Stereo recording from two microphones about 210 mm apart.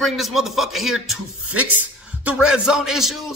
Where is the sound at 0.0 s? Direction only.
Centre (ahead or behind).